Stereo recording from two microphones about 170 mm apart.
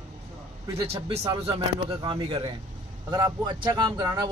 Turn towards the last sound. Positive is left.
turn(degrees=-25)  # may be behind; listen again after turning